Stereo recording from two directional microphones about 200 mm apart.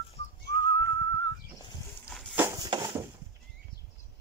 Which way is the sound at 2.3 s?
15° right (ahead or behind).